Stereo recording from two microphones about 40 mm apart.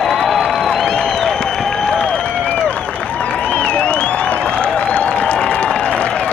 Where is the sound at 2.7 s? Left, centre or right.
Left.